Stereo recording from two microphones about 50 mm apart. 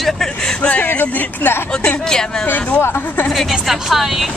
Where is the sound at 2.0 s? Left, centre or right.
Centre.